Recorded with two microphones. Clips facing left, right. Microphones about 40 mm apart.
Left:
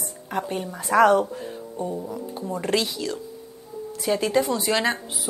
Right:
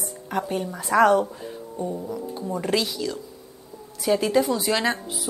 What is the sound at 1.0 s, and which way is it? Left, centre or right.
Speech, left.